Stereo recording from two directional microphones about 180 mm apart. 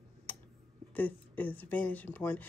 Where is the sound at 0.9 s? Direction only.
10° left (ahead or behind).